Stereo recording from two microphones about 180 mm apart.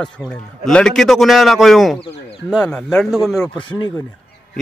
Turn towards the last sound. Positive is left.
turn(degrees=25)  # may be behind; listen again after turning